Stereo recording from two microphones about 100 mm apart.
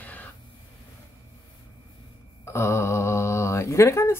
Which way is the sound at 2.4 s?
25° left (ahead or behind).